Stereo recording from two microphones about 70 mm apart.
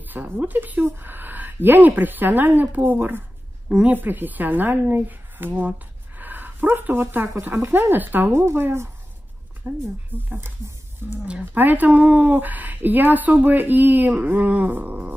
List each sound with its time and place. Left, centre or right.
0.1 s a woman's voice: right
3.6 s a woman's voice: centre
3.9 s a woman's voice: right
10.1 s a woman's voice: right
11.5 s a woman's voice: right